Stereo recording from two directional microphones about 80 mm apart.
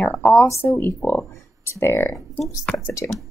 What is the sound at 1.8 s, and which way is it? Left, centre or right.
A woman's voice, left.